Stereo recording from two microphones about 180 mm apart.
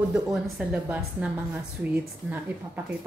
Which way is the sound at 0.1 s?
Centre (ahead or behind).